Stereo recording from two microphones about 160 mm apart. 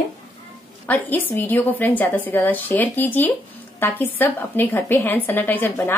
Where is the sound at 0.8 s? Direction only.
10° left (ahead or behind).